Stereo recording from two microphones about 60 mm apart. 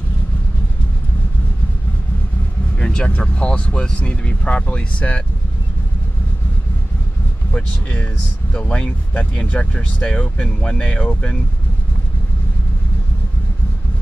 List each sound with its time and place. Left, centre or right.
2.8 s speech: centre
7.5 s speech: left